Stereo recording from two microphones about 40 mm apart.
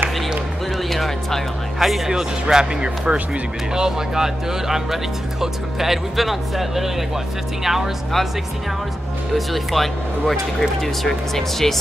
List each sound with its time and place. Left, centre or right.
0.8 s music: centre
2.5 s speech: centre
9.3 s speech: centre